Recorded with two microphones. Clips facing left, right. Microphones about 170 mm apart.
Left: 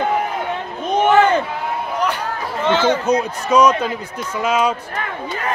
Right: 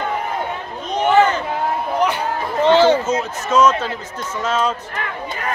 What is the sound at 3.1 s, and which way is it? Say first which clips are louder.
Speech: left 3 dB; 15° left (ahead or behind).